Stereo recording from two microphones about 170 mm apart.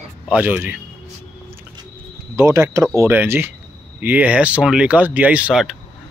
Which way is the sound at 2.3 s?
15° right (ahead or behind).